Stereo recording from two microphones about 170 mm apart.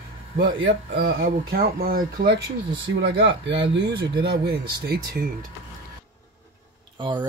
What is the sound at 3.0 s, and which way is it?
Speech, 90° right.